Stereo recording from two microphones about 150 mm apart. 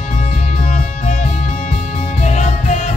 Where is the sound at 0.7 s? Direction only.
50° left (ahead or behind).